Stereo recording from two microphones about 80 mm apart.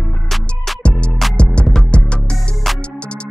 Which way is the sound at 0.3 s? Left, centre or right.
Centre.